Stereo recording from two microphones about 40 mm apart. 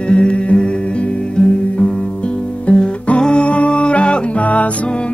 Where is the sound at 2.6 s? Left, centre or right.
Left.